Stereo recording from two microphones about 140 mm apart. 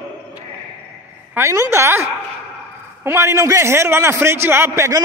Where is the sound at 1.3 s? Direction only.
20° right (ahead or behind).